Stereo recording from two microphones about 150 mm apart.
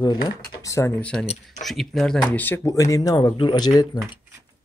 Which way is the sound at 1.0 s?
5° left (ahead or behind).